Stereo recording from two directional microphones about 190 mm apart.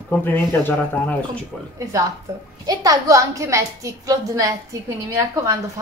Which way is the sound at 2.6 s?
20° right (ahead or behind).